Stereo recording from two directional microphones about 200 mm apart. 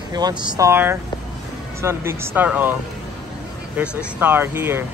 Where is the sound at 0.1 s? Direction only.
20° right (ahead or behind).